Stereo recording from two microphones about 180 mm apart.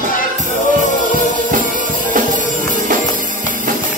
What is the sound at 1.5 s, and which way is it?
Music, 50° right (ahead or behind).